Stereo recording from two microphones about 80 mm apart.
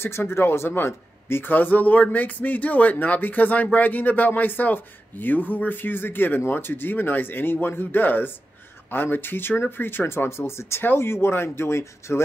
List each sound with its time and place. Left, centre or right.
0.0 s speech: left